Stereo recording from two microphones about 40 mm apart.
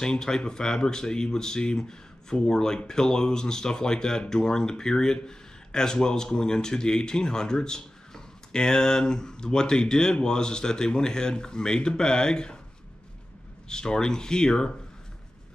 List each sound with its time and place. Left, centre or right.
0.0 s speech: centre
13.7 s speech: centre